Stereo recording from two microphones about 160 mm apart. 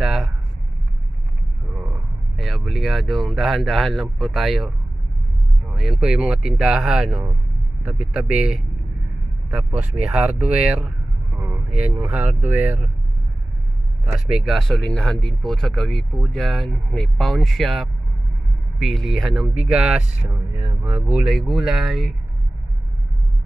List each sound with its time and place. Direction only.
0.0 s speech: centre (ahead or behind)
1.8 s speech: centre (ahead or behind)
14.1 s speech: centre (ahead or behind)